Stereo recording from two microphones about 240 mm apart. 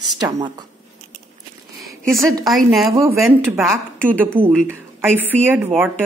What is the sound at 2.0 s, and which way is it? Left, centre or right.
Speech, centre.